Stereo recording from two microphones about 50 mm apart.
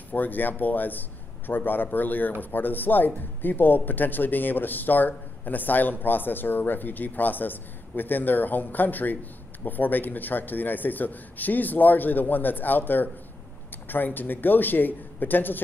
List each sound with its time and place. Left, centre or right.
0.1 s speech: left